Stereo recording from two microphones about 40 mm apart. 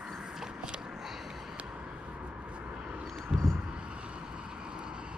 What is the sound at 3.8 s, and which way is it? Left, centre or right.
Vehicle, right.